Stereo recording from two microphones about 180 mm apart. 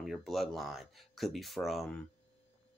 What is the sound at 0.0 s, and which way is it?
Speech, centre (ahead or behind).